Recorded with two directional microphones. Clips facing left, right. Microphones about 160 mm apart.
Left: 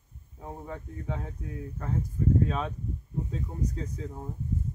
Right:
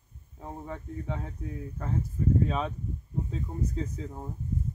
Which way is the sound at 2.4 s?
Centre (ahead or behind).